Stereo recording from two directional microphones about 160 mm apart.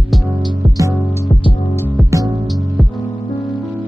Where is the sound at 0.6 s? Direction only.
20° right (ahead or behind).